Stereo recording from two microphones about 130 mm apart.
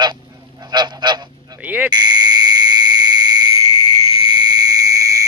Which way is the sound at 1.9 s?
35° right (ahead or behind).